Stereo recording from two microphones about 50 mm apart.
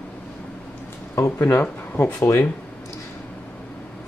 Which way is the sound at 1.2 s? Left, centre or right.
Left.